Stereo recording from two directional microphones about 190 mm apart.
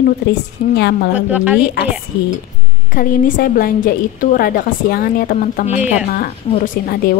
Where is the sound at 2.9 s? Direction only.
45° left (ahead or behind).